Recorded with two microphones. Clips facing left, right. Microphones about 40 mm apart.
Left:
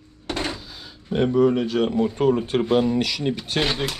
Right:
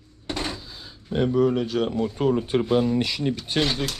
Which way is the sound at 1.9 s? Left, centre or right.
Centre.